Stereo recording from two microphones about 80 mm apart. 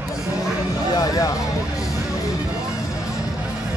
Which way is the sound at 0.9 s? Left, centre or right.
Left.